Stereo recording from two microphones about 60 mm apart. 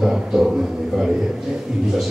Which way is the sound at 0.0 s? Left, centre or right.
Centre.